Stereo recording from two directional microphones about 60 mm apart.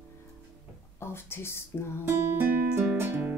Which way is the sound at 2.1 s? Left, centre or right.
Right.